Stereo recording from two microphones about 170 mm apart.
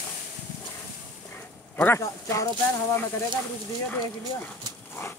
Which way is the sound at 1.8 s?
15° left (ahead or behind).